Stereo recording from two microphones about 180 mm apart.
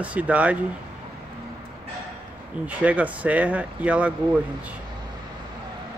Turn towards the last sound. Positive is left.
turn(degrees=-5)  # may be behind; listen again after turning